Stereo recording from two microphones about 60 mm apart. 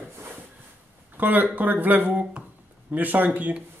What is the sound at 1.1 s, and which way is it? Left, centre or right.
Speech, right.